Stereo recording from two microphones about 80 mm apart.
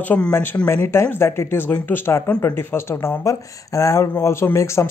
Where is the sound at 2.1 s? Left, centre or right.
Left.